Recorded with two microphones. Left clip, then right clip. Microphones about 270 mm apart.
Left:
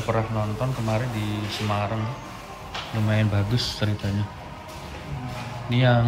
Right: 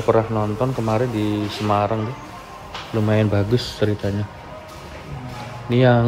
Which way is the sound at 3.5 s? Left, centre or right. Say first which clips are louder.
Right 6 dB; centre.